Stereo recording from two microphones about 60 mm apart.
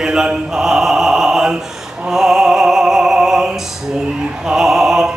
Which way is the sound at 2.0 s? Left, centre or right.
Centre.